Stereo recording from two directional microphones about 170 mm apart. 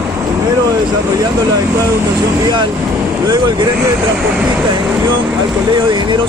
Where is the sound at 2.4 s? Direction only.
25° right (ahead or behind).